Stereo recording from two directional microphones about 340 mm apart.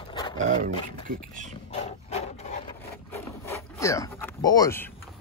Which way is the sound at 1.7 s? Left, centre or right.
Centre.